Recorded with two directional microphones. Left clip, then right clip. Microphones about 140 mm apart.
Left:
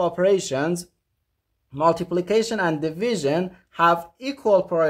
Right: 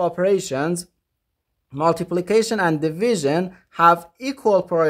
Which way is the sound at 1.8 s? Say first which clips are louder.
Even; 25° right (ahead or behind).